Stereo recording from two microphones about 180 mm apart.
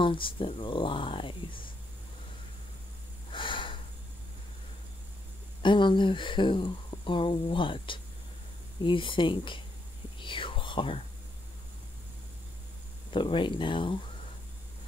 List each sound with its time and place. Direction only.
0.0 s speech: 30° left (ahead or behind)
3.3 s snort: 25° left (ahead or behind)
5.6 s speech: 25° left (ahead or behind)
10.1 s whispering: 25° left (ahead or behind)
13.1 s speech: 25° left (ahead or behind)